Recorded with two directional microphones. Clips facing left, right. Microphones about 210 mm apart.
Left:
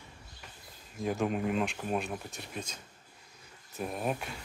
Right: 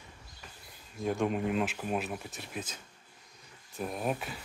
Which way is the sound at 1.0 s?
Centre (ahead or behind).